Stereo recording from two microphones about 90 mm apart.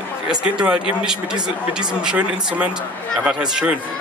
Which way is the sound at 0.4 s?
10° right (ahead or behind).